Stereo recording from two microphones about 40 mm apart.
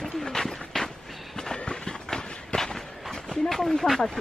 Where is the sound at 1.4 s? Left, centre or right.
Centre.